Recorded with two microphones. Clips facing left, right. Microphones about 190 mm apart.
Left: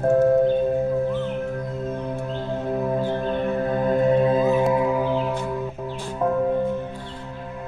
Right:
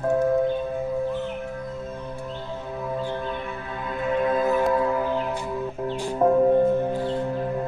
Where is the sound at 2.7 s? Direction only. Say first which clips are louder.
Left 4 dB; 45° left (ahead or behind); by 5.3 s 5° left (ahead or behind).